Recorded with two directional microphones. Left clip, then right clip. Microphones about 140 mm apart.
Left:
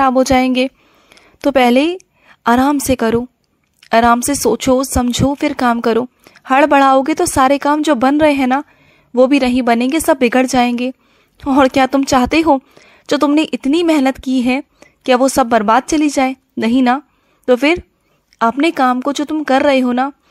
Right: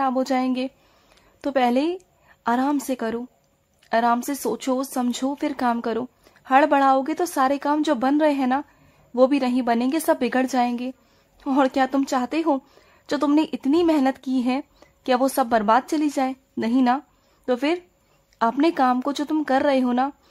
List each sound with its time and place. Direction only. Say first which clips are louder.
0.0 s a woman's voice: left 11 dB; 45° left (ahead or behind)